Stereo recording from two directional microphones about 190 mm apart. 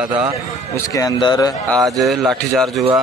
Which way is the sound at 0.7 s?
20° left (ahead or behind).